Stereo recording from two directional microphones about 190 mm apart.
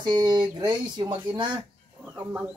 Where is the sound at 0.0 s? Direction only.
20° right (ahead or behind).